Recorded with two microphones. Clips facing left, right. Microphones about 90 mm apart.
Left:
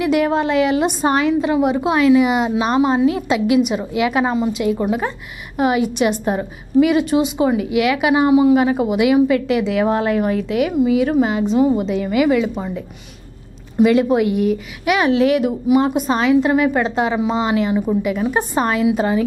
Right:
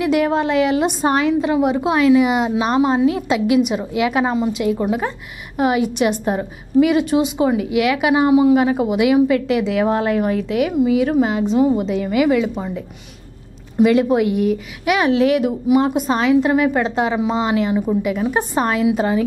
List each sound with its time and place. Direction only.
0.0 s a woman's voice: 15° left (ahead or behind)
13.8 s a woman's voice: 15° left (ahead or behind)